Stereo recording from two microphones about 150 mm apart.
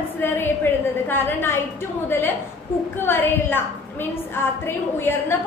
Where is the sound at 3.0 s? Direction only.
15° left (ahead or behind).